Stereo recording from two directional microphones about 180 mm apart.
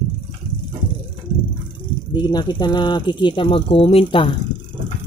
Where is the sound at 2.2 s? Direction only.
25° left (ahead or behind).